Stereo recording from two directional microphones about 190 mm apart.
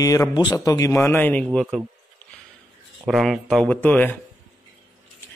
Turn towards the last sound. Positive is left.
turn(degrees=10)  # may be behind; listen again after turning